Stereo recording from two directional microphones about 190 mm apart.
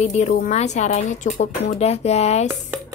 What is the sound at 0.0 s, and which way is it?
A woman's voice, 40° left (ahead or behind).